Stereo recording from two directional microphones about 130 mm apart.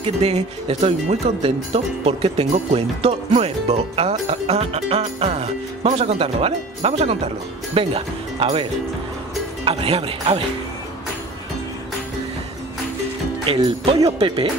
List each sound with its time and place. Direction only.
0.0 s speech: 50° right (ahead or behind)
9.7 s speech: 45° right (ahead or behind)
13.6 s speech: 35° right (ahead or behind)